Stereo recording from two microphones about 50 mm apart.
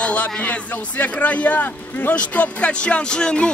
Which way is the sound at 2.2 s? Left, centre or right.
Left.